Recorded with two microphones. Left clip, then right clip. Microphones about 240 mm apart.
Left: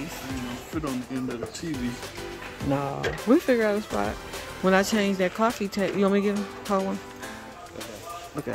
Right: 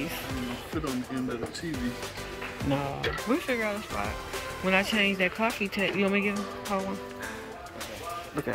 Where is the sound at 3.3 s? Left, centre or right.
Left.